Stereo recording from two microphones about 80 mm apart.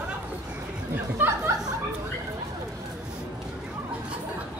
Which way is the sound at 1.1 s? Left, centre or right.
Right.